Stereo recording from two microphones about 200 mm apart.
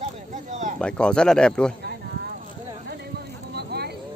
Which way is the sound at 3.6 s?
55° right (ahead or behind).